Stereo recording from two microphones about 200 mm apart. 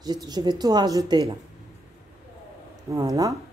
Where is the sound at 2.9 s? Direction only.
20° right (ahead or behind).